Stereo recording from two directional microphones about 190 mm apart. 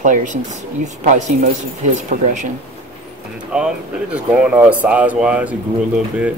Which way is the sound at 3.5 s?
5° right (ahead or behind).